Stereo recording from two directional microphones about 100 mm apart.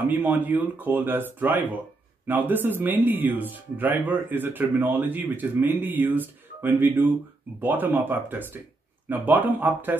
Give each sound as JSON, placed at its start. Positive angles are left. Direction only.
{"t": 0.0, "sound": "speech", "side_deg": -20}